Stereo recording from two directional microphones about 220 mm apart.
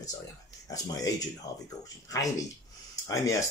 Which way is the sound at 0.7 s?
15° left (ahead or behind).